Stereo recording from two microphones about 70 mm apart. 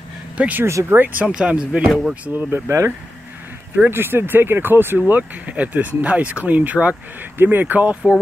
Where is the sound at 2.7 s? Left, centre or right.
Right.